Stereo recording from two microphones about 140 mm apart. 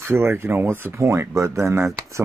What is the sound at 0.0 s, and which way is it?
Speech, 20° right (ahead or behind).